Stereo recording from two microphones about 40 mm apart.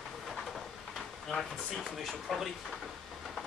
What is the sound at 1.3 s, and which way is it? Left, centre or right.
Speech, centre.